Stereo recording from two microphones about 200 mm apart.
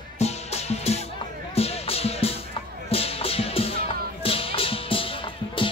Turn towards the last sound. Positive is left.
turn(degrees=25)  # may be behind; listen again after turning